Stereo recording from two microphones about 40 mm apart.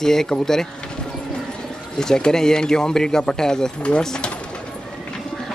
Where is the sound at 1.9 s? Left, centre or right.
Centre.